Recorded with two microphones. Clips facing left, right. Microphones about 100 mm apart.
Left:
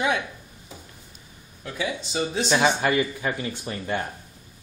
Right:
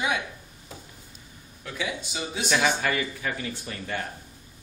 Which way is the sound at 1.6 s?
30° left (ahead or behind).